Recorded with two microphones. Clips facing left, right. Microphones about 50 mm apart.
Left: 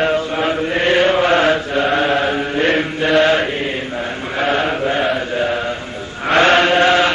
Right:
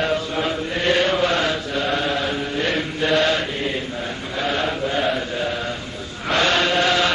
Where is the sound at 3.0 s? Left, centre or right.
Left.